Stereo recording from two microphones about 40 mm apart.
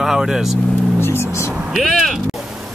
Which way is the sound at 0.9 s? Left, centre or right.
Left.